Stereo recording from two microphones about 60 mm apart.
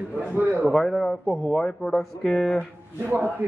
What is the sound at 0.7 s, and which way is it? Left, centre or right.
Speech, centre.